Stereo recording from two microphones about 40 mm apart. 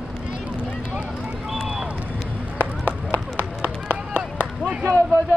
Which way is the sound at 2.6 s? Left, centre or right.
Right.